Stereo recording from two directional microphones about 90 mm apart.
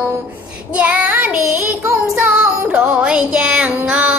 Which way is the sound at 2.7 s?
10° right (ahead or behind).